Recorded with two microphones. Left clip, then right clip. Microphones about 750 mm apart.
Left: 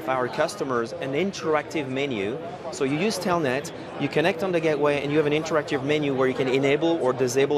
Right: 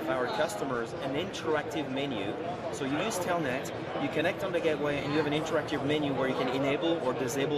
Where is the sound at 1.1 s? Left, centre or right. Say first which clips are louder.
Left 7 dB; left.